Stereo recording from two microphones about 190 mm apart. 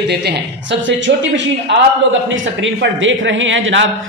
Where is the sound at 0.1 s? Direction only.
65° right (ahead or behind).